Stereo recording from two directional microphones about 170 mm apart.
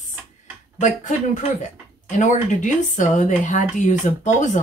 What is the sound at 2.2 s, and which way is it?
Speech, 45° left (ahead or behind).